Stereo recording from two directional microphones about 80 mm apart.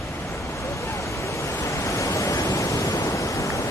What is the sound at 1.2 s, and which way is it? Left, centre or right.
Waves, left.